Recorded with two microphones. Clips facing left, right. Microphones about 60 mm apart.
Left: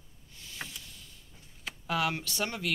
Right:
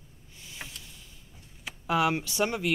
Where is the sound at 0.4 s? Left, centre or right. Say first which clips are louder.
Left 1 dB; centre.